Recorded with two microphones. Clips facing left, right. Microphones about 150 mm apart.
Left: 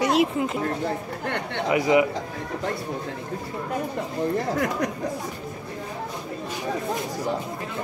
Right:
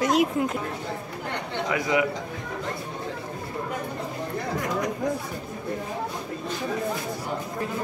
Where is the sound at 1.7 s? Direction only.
25° left (ahead or behind).